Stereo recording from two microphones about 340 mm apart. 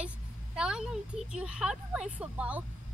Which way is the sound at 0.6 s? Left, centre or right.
Centre.